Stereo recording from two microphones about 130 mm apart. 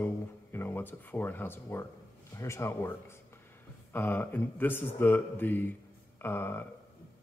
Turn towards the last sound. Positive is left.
turn(degrees=15)  # may be behind; listen again after turning